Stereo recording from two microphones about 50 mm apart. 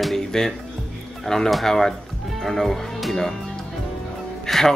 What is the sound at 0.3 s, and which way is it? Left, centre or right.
A man's voice, centre.